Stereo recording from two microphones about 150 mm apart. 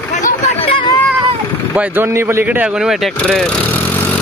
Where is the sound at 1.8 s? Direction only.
15° right (ahead or behind).